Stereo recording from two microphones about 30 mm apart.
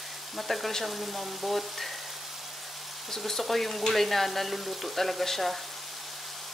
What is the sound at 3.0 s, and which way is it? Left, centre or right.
Frying, centre.